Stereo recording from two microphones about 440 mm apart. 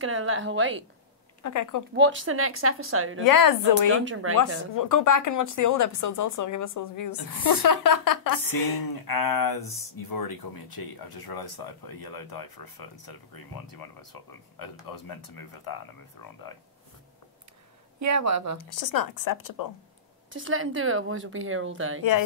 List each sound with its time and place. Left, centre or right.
0.0 s speech: right
1.4 s speech: left
2.0 s speech: right
3.3 s speech: left
4.0 s speech: right
4.7 s speech: left
9.6 s speech: centre
9.9 s speech: left
17.9 s speech: right
18.8 s speech: left
20.3 s speech: right